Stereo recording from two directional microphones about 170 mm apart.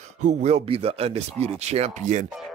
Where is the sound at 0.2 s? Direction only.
45° right (ahead or behind).